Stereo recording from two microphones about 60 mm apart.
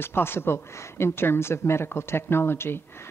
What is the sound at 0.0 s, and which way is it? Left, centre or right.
Speech, left.